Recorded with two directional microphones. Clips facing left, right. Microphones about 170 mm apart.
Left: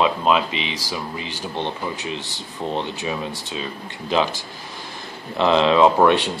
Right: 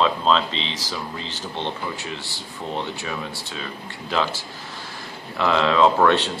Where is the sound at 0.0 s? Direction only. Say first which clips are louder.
Left 1 dB; 15° left (ahead or behind).